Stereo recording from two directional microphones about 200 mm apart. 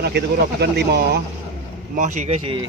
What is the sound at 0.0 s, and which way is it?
Speech, 55° right (ahead or behind).